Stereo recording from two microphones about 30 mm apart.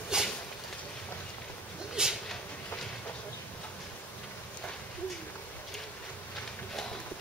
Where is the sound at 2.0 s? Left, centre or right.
Right.